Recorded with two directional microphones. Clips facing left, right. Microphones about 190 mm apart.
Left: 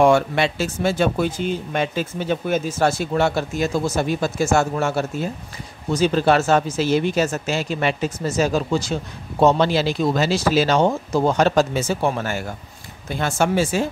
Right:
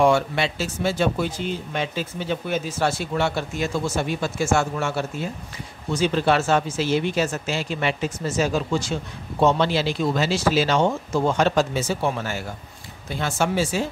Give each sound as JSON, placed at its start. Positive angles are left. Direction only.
{"t": 0.0, "sound": "speech", "side_deg": 50}